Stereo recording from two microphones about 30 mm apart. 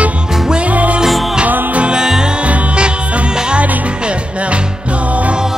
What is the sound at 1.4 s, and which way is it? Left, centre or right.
Music, right.